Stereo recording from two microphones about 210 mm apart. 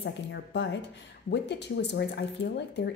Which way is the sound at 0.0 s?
55° left (ahead or behind).